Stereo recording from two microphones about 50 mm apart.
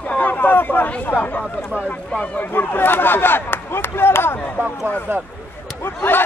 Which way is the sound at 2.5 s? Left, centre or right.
Left.